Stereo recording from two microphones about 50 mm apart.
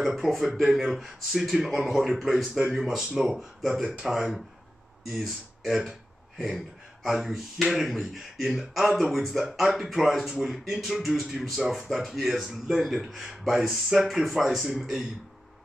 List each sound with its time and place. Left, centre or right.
0.0 s speech: centre
5.8 s a sound: centre
7.0 s speech: centre